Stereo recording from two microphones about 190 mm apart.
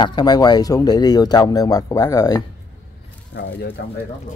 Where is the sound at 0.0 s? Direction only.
20° left (ahead or behind).